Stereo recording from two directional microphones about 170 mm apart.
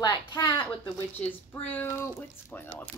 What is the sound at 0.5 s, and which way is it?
Speech, 10° left (ahead or behind).